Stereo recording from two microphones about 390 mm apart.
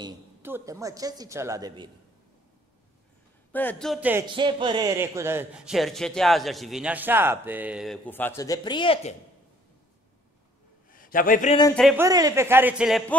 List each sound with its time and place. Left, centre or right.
0.0 s a woman's voice: centre
3.5 s speech: centre
10.9 s speech: left; by 13.0 s centre